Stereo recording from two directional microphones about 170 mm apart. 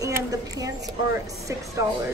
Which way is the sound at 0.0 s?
20° right (ahead or behind).